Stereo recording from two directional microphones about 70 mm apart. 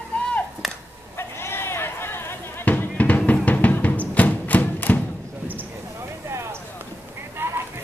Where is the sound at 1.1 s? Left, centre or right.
Left.